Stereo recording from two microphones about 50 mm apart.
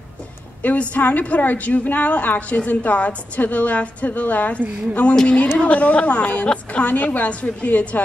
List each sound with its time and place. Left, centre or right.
0.7 s a woman's voice: left
5.1 s a woman's voice: left